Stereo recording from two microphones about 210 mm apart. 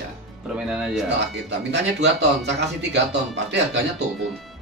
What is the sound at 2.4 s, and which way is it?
Speech, 55° right (ahead or behind).